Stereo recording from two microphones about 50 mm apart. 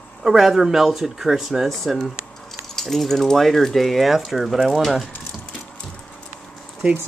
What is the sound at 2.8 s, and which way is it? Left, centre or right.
Speech, centre.